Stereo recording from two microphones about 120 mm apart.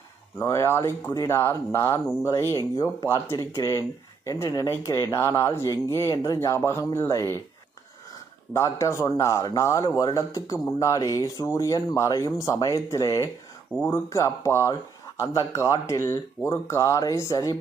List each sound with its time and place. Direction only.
0.4 s speech: 20° left (ahead or behind)
8.5 s speech: 25° left (ahead or behind)